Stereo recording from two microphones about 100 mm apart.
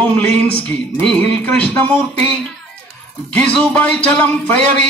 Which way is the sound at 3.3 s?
15° left (ahead or behind).